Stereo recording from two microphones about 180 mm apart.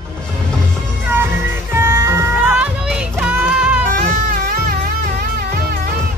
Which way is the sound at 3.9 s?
50° right (ahead or behind).